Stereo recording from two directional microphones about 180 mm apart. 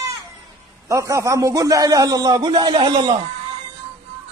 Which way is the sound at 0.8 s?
15° right (ahead or behind).